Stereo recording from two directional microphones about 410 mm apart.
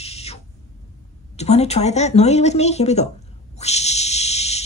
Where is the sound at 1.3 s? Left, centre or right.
Centre.